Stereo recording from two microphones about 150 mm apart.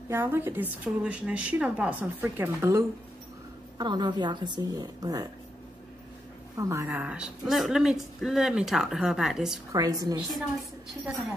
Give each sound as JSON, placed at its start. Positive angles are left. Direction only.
{"t": 0.1, "sound": "a woman's voice", "side_deg": -15}
{"t": 3.7, "sound": "a woman's voice", "side_deg": -30}
{"t": 6.5, "sound": "a woman's voice", "side_deg": -20}
{"t": 9.7, "sound": "a woman's voice", "side_deg": -25}